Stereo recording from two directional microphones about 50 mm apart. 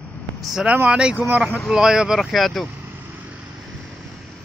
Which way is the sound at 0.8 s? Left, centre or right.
Centre.